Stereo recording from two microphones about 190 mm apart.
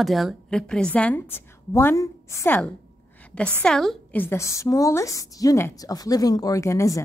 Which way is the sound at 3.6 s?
Centre (ahead or behind).